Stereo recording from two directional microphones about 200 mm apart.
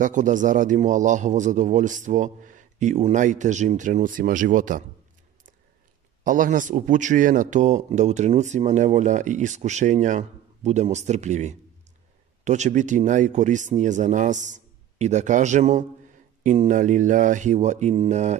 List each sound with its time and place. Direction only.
0.0 s speech: 40° right (ahead or behind)
6.2 s speech: 40° right (ahead or behind)